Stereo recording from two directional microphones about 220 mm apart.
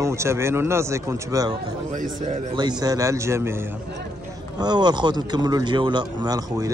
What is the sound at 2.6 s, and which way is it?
Speech, 20° right (ahead or behind).